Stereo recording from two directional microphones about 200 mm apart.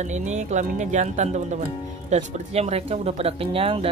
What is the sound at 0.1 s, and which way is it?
Speech, 35° right (ahead or behind).